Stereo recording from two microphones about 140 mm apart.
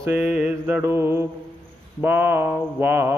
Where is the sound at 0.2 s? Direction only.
5° right (ahead or behind).